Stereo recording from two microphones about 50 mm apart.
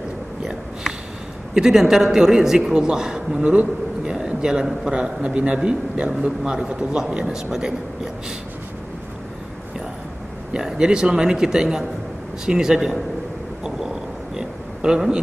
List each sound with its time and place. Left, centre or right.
0.4 s a sound: centre
1.5 s a man's voice: centre
10.5 s a man's voice: centre
13.7 s vehicle: centre